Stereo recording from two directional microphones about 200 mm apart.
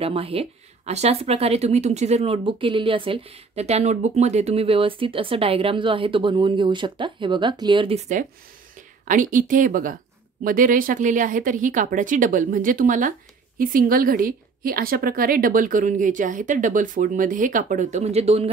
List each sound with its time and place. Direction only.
0.0 s speech: 30° right (ahead or behind)
9.0 s a woman's voice: 40° right (ahead or behind)